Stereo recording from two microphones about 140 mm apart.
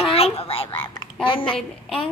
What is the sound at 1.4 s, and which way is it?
Speech, 5° left (ahead or behind).